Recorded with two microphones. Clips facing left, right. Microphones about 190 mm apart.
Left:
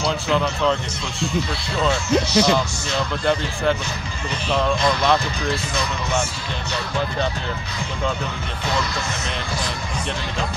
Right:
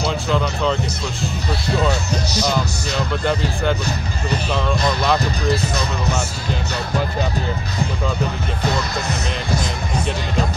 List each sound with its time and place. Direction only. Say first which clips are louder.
0.0 s speech: even; centre (ahead or behind)
1.9 s speech: left 2 dB; 40° right (ahead or behind)
3.8 s speech: right 5 dB; 40° right (ahead or behind)